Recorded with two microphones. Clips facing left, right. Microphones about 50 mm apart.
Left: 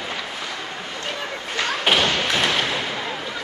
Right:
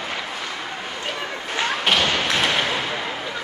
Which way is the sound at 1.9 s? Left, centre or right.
Centre.